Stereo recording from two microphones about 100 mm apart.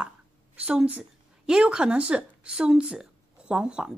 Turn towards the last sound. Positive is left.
turn(degrees=-10)  # may be behind; listen again after turning